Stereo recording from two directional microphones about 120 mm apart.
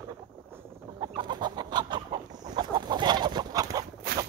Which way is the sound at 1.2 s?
35° right (ahead or behind).